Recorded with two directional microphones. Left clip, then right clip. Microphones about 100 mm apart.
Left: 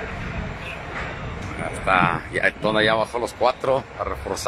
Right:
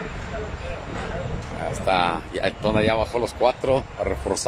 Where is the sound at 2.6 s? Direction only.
20° right (ahead or behind).